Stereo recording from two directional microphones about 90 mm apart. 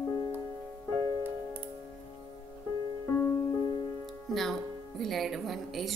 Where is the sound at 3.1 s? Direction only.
35° left (ahead or behind).